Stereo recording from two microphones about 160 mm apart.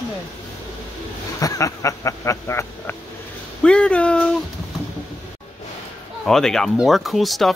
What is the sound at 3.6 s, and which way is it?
Speech, 5° left (ahead or behind).